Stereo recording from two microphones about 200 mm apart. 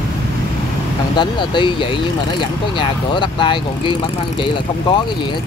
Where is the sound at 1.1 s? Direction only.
25° left (ahead or behind).